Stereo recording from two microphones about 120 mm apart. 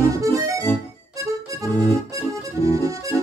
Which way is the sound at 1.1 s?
25° right (ahead or behind).